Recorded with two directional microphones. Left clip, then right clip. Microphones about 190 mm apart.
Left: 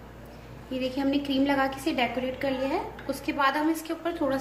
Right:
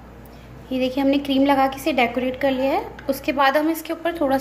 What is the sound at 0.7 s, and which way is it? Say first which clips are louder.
A woman's voice: right 8 dB; 50° right (ahead or behind).